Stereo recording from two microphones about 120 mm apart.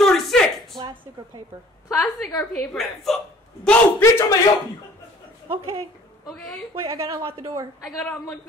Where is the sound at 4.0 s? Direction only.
25° left (ahead or behind).